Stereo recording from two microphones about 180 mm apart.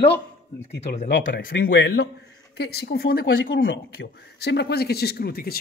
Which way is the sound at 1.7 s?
85° left.